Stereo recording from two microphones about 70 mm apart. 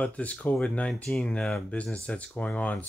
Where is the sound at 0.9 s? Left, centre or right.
Centre.